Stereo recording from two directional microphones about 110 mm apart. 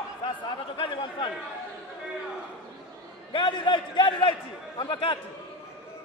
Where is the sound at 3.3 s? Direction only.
50° left (ahead or behind).